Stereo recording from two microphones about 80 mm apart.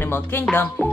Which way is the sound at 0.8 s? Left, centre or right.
Centre.